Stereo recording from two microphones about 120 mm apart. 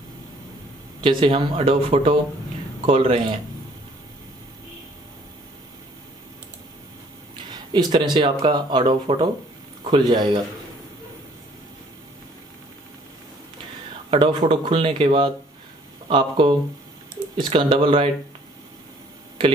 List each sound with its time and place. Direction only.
1.0 s speech: 45° right (ahead or behind)
7.5 s speech: 35° right (ahead or behind)
14.1 s speech: 45° right (ahead or behind)